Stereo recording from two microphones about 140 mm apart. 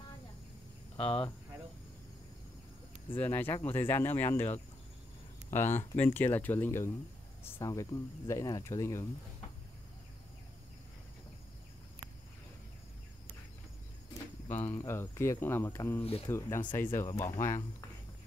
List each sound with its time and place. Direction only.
0.9 s speech: 40° left (ahead or behind)
3.2 s speech: 15° left (ahead or behind)
14.5 s speech: 15° left (ahead or behind)
16.0 s speech: 45° left (ahead or behind)
16.3 s speech: 20° left (ahead or behind)